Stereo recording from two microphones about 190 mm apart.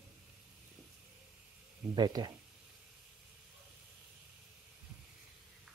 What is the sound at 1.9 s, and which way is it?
Speech, 20° right (ahead or behind).